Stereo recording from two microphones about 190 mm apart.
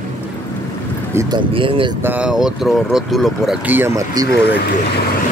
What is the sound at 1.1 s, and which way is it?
Speech, 15° right (ahead or behind).